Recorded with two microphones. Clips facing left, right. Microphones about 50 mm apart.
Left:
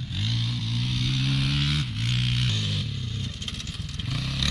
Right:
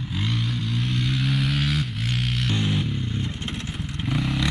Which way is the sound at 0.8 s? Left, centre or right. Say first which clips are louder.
Right 3 dB; centre.